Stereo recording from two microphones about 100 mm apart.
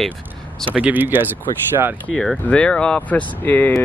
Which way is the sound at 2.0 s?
10° left (ahead or behind).